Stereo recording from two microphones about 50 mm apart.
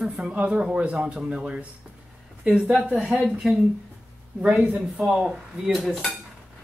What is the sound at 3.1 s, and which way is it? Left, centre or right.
Speech, right.